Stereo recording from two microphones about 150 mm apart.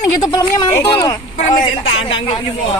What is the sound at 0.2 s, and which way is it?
Speech, 25° left (ahead or behind).